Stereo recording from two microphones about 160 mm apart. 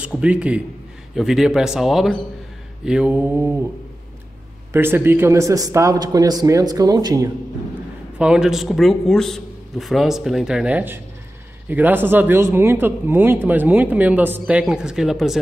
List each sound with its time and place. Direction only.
0.0 s a man's voice: 5° right (ahead or behind)
4.7 s a man's voice: 15° right (ahead or behind)
8.2 s a man's voice: 5° right (ahead or behind)